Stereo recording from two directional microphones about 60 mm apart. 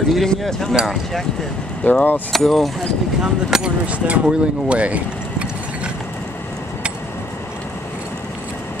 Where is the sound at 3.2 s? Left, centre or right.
Centre.